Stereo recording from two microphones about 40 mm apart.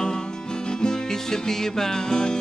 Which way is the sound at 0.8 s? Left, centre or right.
Centre.